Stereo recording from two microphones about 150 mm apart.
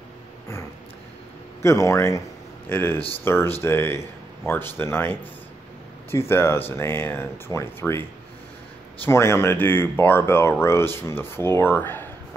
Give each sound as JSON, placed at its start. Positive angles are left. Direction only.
{"t": 1.6, "sound": "speech", "side_deg": 20}